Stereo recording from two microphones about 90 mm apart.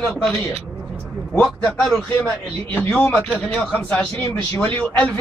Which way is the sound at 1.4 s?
5° left (ahead or behind).